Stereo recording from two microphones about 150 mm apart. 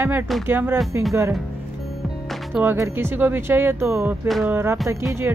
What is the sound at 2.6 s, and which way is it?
Speech, 15° right (ahead or behind).